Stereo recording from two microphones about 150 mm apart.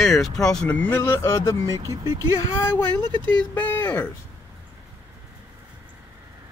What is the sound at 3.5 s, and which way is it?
Speech, 10° left (ahead or behind).